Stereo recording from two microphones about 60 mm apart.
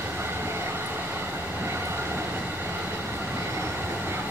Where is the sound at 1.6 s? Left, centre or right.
Right.